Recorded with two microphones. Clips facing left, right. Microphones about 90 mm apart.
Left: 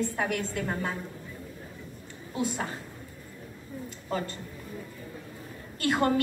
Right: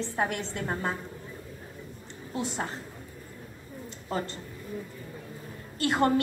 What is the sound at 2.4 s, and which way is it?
Speech, 25° right (ahead or behind).